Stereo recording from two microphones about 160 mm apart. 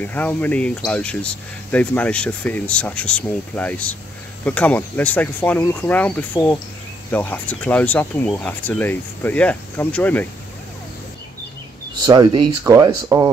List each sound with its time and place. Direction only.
0.0 s speech: 10° left (ahead or behind)
12.0 s speech: 25° right (ahead or behind)